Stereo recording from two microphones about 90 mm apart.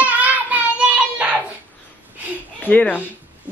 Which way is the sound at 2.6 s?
20° left (ahead or behind).